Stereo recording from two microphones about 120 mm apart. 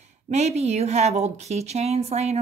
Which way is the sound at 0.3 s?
65° right (ahead or behind).